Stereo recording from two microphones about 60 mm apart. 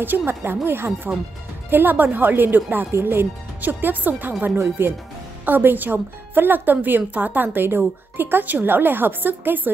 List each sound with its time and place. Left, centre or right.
0.0 s speech: right
3.6 s speech: right